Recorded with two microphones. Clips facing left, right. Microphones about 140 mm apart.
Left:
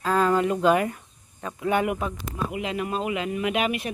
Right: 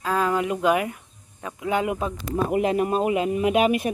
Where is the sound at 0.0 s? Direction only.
5° right (ahead or behind); by 2.1 s 25° right (ahead or behind).